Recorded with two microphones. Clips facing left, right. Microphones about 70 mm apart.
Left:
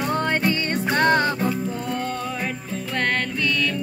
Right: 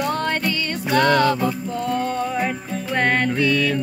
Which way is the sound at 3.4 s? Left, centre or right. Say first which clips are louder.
Right 4 dB; centre.